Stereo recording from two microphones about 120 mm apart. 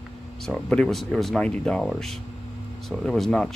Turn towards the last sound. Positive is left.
turn(degrees=5)  # may be behind; listen again after turning